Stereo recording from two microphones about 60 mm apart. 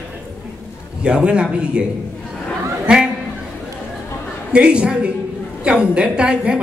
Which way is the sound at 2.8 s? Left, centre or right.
Centre.